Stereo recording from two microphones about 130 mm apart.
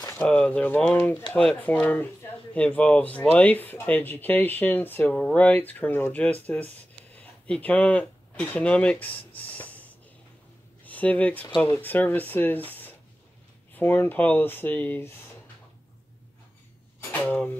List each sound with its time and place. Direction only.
0.1 s speech: 10° left (ahead or behind)
11.4 s speech: 35° left (ahead or behind)
11.7 s speech: 15° left (ahead or behind)
17.1 s a sound: 10° left (ahead or behind)